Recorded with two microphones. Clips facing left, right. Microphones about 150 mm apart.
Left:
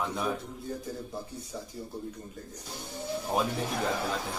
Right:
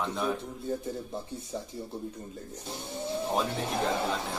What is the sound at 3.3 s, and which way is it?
Speech, centre (ahead or behind).